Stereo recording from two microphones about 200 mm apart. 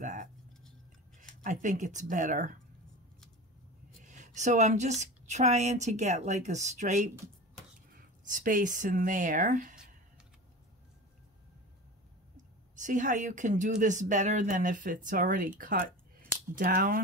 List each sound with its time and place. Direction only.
0.0 s a sound: 40° right (ahead or behind)
1.4 s speech: 40° right (ahead or behind)
4.0 s a sound: 40° right (ahead or behind)
5.0 s speech: 35° right (ahead or behind)
8.3 s speech: 40° right (ahead or behind)
12.8 s speech: 40° right (ahead or behind)